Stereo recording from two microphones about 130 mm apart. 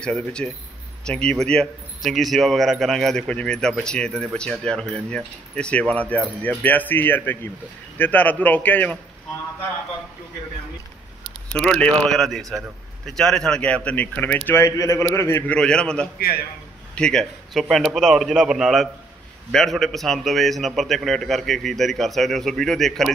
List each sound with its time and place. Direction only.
0.0 s a man's voice: 5° left (ahead or behind)
11.2 s a sound: 5° left (ahead or behind)
12.0 s a man's voice: 5° left (ahead or behind); by 15.5 s 20° left (ahead or behind)
15.5 s a man's voice: 5° left (ahead or behind)